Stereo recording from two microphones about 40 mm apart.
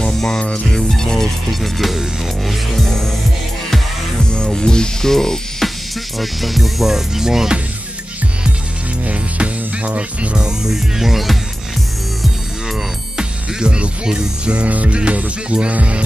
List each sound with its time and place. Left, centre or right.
0.0 s music: centre
1.5 s music: centre
4.2 s music: centre
6.1 s music: centre
9.0 s music: right
10.4 s music: centre
13.2 s music: right